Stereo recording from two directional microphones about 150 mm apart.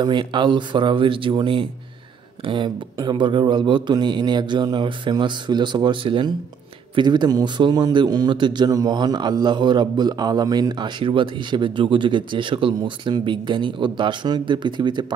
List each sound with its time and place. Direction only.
0.0 s speech: 30° right (ahead or behind)